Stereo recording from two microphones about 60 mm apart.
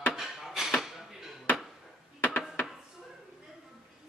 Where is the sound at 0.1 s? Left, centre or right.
Centre.